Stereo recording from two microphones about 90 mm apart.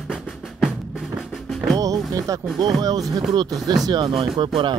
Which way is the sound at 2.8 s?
45° right (ahead or behind).